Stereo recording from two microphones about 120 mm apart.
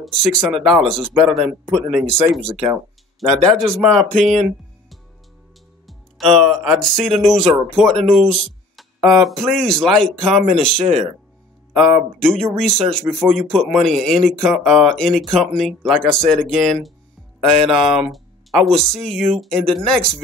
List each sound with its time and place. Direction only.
0.0 s speech: centre (ahead or behind)